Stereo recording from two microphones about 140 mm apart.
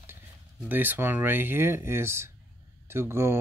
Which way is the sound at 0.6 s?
15° right (ahead or behind).